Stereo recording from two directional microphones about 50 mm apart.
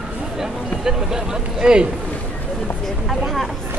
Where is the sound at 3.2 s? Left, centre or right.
Centre.